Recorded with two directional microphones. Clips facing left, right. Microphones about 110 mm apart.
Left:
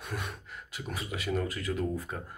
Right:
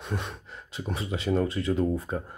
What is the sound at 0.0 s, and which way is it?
Speech, 25° right (ahead or behind).